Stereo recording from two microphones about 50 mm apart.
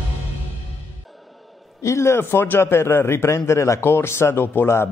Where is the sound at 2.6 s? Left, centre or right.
Left.